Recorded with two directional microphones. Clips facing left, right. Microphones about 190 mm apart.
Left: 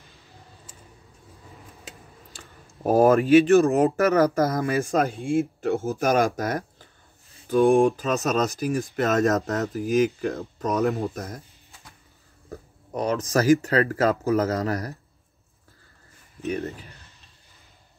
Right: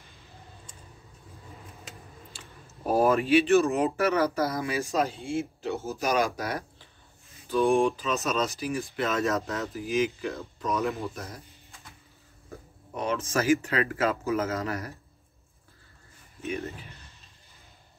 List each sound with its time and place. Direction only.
2.3 s speech: 45° left (ahead or behind)
12.4 s speech: 40° left (ahead or behind)
16.4 s speech: 45° left (ahead or behind)